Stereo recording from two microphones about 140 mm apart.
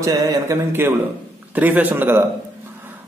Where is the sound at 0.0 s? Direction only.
25° right (ahead or behind).